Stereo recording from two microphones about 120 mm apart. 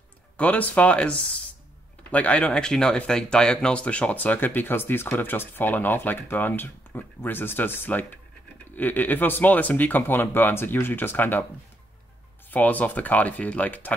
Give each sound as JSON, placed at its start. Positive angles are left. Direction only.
{"t": 0.4, "sound": "speech", "side_deg": 15}
{"t": 12.4, "sound": "speech", "side_deg": 15}